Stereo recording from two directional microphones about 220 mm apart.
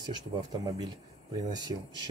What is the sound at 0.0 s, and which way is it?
Speech, 20° right (ahead or behind).